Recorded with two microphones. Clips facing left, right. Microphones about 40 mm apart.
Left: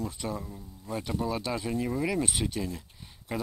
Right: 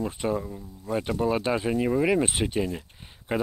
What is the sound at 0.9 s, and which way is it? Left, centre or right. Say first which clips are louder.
Speech: right 6 dB; right.